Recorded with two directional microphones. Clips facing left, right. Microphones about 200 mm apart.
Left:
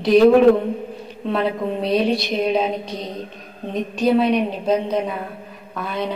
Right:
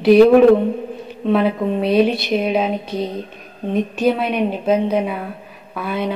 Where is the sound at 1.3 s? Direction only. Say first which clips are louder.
Right 5 dB; 5° right (ahead or behind).